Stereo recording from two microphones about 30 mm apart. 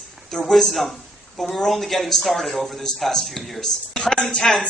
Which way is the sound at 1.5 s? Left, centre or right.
Centre.